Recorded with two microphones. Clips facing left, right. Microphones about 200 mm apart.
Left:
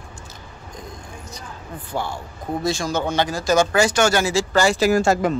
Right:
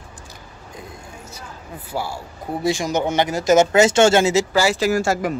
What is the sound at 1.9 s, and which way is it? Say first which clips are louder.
A man's voice: even; 10° right (ahead or behind).